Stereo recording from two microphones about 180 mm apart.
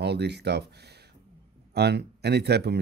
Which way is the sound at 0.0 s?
70° right (ahead or behind).